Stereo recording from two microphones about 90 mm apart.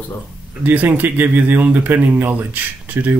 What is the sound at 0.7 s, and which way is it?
Speech, 20° right (ahead or behind).